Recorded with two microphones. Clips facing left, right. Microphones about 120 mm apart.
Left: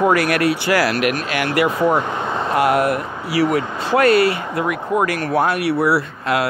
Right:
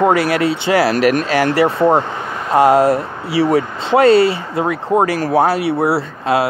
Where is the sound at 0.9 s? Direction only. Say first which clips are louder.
Right 6 dB; 40° right (ahead or behind).